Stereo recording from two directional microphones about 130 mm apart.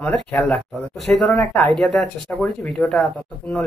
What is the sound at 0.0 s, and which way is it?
Speech, 10° left (ahead or behind).